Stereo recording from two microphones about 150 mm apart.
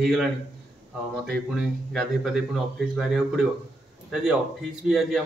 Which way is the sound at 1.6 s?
Centre (ahead or behind).